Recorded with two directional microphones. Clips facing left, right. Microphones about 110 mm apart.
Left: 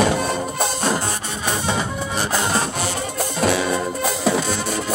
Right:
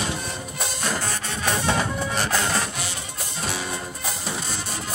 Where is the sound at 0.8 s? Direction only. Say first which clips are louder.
Left 4 dB; 20° left (ahead or behind).